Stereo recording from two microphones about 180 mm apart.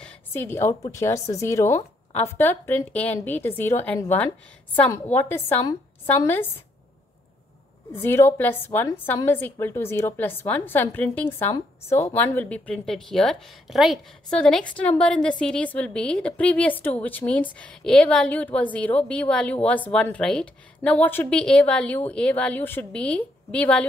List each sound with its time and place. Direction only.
0.0 s a sound: 10° left (ahead or behind)
0.9 s a woman's voice: 15° left (ahead or behind)
7.9 s a woman's voice: 15° left (ahead or behind)